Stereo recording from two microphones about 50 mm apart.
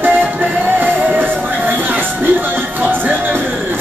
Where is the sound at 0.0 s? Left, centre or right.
Right.